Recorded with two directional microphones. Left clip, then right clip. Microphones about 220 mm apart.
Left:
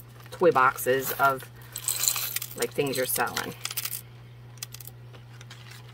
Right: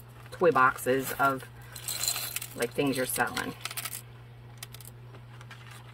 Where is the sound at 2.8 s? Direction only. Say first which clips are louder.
Left 2 dB; 15° left (ahead or behind).